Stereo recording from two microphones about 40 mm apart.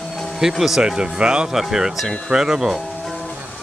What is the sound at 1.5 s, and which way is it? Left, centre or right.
Speech, centre.